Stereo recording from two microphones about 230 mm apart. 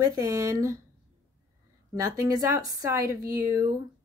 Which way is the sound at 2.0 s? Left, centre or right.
Centre.